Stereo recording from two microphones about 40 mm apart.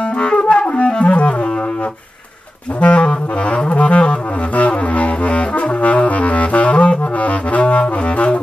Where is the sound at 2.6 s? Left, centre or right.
Left.